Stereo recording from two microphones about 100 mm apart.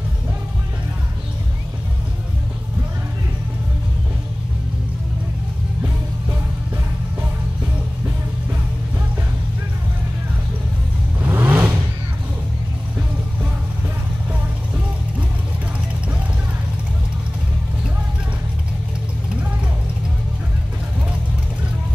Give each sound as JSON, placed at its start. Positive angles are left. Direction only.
{"t": 11.1, "sound": "vehicle", "side_deg": -20}